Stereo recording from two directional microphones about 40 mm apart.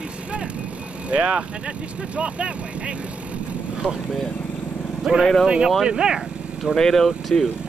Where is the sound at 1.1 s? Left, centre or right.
Right.